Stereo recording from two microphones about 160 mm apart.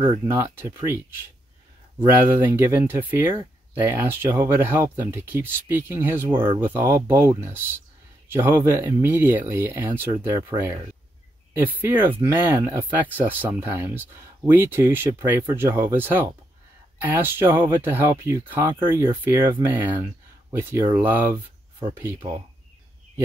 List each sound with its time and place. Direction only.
0.3 s speech: 15° right (ahead or behind)